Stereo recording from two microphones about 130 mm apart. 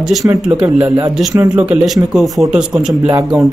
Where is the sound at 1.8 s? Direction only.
Centre (ahead or behind).